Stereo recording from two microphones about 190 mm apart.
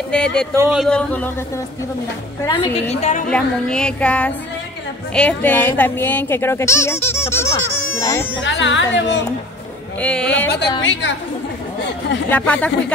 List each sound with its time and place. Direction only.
0.1 s music: 5° left (ahead or behind)
0.6 s speech: 5° right (ahead or behind)
0.8 s speech: 5° left (ahead or behind)
2.4 s a woman's voice: 25° left (ahead or behind)
3.3 s music: 5° left (ahead or behind)
5.1 s speech: 5° left (ahead or behind)
8.4 s a child's voice: 70° left (ahead or behind)
9.9 s speech: 5° left (ahead or behind)
10.9 s a child's voice: 75° left (ahead or behind)
12.3 s speech: 10° left (ahead or behind)